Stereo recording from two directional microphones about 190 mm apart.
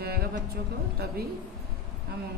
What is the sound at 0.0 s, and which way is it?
Music, 55° right (ahead or behind).